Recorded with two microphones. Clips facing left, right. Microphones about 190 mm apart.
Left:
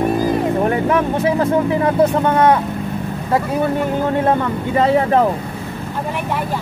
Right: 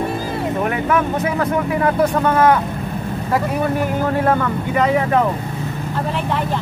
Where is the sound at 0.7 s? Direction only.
30° left (ahead or behind).